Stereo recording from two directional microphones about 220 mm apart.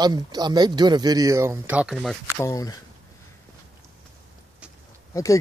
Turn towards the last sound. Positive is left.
turn(degrees=15)  # may be behind; listen again after turning